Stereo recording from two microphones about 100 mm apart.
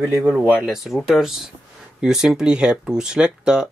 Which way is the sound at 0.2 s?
20° right (ahead or behind).